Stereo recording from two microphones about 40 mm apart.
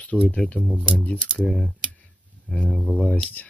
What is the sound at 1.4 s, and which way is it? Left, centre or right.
Speech, centre.